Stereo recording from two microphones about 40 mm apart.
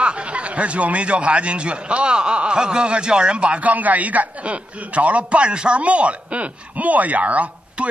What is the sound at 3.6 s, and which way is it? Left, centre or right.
A man's voice, right.